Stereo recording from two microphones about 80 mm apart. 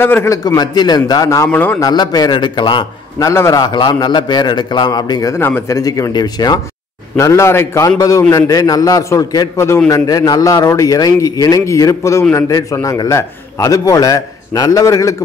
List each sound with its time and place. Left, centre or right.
0.0 s a man's voice: left
0.6 s speech: left
1.5 s a man's voice: centre
1.8 s speech: left
3.2 s a man's voice: left
3.5 s a man's voice: left
5.3 s a man's voice: left
5.7 s a man's voice: left
7.2 s a man's voice: left
8.5 s a man's voice: left